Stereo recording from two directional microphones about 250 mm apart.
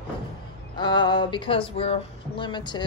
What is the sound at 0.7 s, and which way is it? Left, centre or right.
A woman's voice, centre.